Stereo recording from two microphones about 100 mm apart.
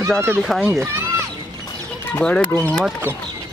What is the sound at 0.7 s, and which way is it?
Speech, 20° right (ahead or behind).